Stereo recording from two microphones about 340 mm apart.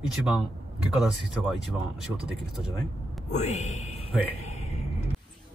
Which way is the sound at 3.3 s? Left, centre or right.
Centre.